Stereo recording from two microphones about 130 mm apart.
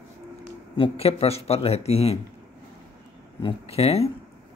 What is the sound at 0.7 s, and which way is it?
Speech, 45° left (ahead or behind).